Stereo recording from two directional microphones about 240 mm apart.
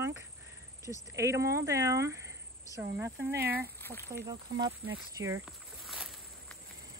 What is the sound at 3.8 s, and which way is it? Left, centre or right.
Speech, centre.